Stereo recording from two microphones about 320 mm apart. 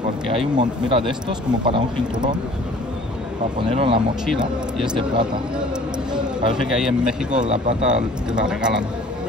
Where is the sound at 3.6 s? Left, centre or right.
Centre.